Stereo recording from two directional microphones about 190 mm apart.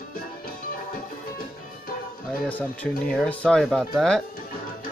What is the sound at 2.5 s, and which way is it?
Speech, 10° left (ahead or behind).